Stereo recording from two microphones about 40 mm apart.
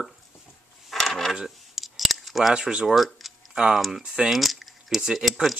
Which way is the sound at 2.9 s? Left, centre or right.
Centre.